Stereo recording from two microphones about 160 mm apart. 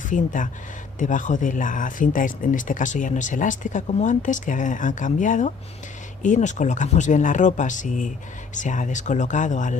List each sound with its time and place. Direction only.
0.1 s speech: 55° left (ahead or behind)